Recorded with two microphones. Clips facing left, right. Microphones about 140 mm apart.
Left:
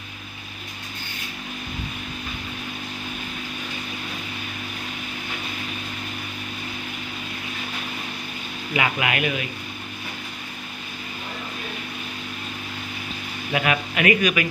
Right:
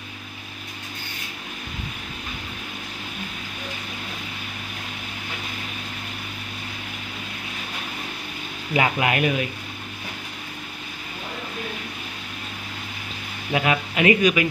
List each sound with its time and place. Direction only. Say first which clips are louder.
8.7 s speech: right 3 dB; 35° right (ahead or behind)
13.5 s speech: right 1 dB; 25° right (ahead or behind)